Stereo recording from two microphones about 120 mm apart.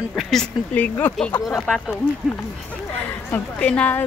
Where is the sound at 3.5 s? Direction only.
10° left (ahead or behind).